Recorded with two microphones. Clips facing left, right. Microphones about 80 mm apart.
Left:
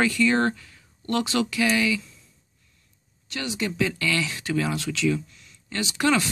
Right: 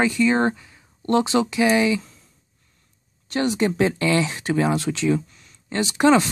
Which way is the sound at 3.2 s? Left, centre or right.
Right.